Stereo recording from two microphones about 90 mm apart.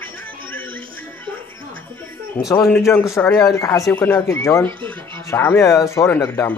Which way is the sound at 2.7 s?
30° left (ahead or behind).